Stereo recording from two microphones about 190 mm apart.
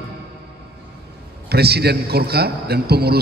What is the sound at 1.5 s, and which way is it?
A man's voice, 55° right (ahead or behind).